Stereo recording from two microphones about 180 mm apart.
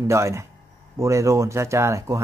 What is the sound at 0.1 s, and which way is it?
Speech, 15° right (ahead or behind).